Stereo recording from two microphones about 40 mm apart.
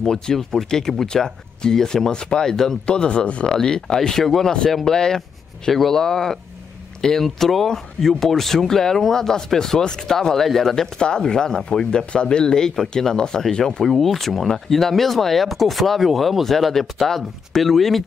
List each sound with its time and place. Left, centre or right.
0.0 s speech: centre
2.9 s speech: left
3.5 s speech: centre
7.2 s speech: centre
11.0 s speech: left; by 18.0 s centre